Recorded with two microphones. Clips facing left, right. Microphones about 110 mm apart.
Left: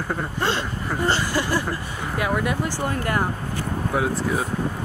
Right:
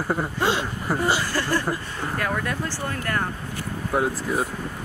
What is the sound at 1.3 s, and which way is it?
Speech, 15° left (ahead or behind).